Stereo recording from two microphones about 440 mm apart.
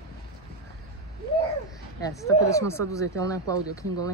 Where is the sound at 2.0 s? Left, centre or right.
Centre.